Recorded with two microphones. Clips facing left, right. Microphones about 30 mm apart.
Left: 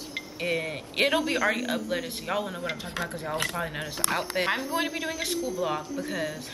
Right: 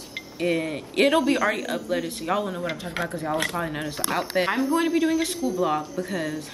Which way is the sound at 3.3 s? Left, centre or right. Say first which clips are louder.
Right 4 dB; right.